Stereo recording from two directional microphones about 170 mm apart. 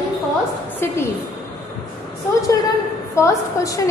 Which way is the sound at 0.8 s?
15° left (ahead or behind).